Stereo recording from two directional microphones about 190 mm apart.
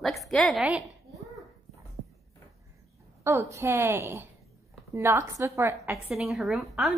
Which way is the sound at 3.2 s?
15° right (ahead or behind).